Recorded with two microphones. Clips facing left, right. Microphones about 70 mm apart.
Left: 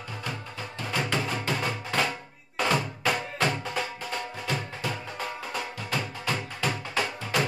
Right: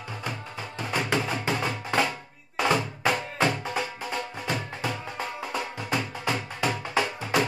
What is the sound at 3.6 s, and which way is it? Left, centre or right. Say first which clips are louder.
Music: right 1 dB; centre.